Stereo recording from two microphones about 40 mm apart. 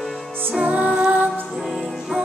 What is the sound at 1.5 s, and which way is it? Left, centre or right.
Music, centre.